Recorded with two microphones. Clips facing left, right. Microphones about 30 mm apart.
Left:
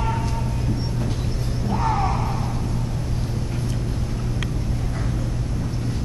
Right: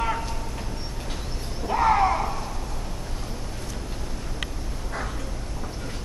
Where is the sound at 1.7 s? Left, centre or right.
Right.